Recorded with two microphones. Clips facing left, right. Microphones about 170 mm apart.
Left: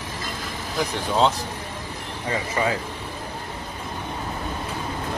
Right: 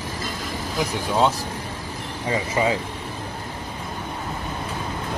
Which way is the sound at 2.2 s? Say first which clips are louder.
Right 2 dB; 20° right (ahead or behind).